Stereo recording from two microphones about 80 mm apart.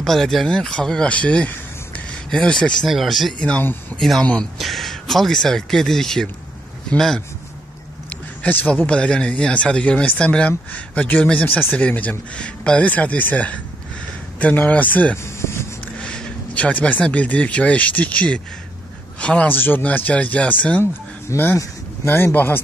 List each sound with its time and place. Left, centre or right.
0.0 s speech: centre
2.9 s speech: centre
3.3 s speech: centre
4.6 s speech: centre
8.4 s speech: left
15.2 s a sound: left
16.0 s a man's voice: centre
19.5 s speech: left
20.8 s speech: left